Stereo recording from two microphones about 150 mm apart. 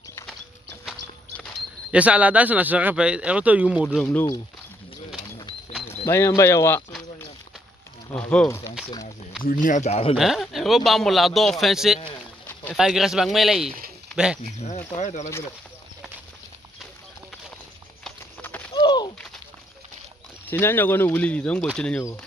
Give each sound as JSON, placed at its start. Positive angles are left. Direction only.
{"t": 1.9, "sound": "speech", "side_deg": -10}
{"t": 4.0, "sound": "speech", "side_deg": 10}
{"t": 6.0, "sound": "speech", "side_deg": 20}
{"t": 8.1, "sound": "speech", "side_deg": 5}
{"t": 9.4, "sound": "speech", "side_deg": 65}
{"t": 10.1, "sound": "a man's voice", "side_deg": 0}
{"t": 14.4, "sound": "speech", "side_deg": 50}
{"t": 18.0, "sound": "a sound", "side_deg": 10}
{"t": 18.7, "sound": "a sound", "side_deg": 30}
{"t": 20.4, "sound": "a man's voice", "side_deg": 15}